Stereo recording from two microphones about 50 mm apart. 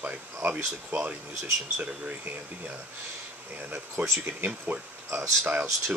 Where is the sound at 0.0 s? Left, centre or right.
Right.